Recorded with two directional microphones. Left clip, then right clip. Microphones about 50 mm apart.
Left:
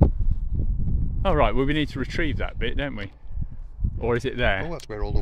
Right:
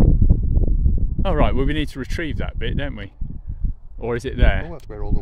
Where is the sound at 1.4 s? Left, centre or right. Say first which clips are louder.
Even; right.